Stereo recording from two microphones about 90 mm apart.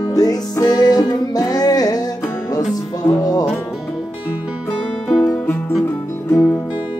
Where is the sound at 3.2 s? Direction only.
45° left (ahead or behind).